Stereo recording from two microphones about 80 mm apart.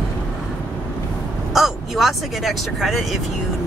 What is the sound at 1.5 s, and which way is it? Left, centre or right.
Speech, centre.